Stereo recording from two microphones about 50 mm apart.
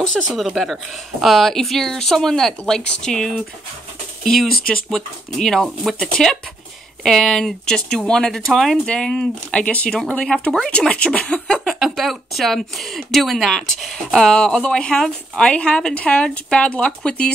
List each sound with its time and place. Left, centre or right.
0.3 s speech: centre
8.8 s speech: centre
11.5 s speech: centre
13.9 s speech: centre